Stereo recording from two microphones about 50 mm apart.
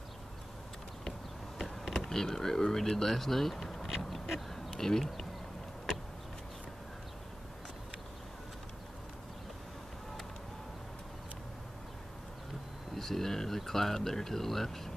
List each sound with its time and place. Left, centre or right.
1.6 s a sound: centre
2.0 s speech: centre
12.9 s speech: centre